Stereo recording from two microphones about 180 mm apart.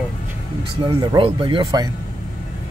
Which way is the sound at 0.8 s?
25° right (ahead or behind).